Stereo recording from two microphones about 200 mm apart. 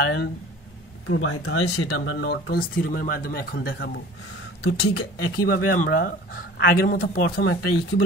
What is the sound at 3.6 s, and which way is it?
Speech, 60° left (ahead or behind).